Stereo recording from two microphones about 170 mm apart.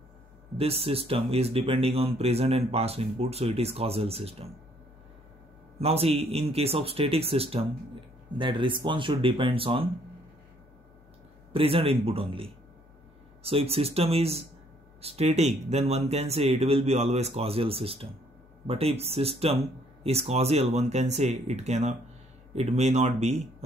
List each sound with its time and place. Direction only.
0.6 s speech: 35° right (ahead or behind)
5.8 s speech: 35° right (ahead or behind)
11.5 s speech: 30° right (ahead or behind)